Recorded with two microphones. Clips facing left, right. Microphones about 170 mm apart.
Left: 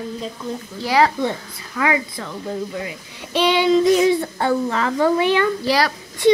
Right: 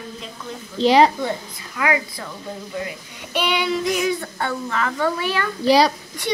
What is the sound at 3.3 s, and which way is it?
Child singing, 25° left (ahead or behind).